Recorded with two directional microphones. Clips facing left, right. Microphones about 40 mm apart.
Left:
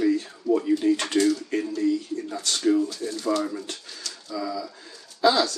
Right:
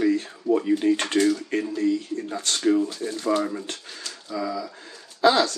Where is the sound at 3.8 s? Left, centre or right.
Right.